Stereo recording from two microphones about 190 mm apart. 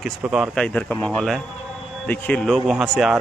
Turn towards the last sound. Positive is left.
turn(degrees=0)  # may be behind; listen again after turning